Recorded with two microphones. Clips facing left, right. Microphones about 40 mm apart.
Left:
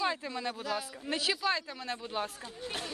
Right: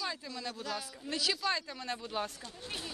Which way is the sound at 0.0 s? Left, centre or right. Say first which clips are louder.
Left 6 dB; left.